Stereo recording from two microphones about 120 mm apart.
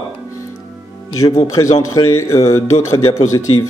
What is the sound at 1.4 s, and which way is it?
A man's voice, 30° left (ahead or behind).